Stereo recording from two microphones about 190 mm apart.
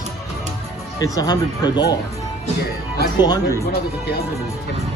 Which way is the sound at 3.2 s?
20° left (ahead or behind).